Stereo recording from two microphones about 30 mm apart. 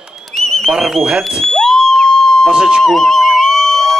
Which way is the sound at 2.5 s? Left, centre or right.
Right.